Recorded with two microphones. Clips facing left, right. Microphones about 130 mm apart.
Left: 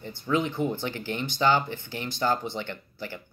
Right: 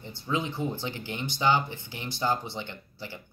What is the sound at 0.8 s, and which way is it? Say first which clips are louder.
Speech: left 3 dB; 20° right (ahead or behind).